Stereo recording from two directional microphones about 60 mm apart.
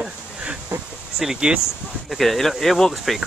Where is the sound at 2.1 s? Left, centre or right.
Centre.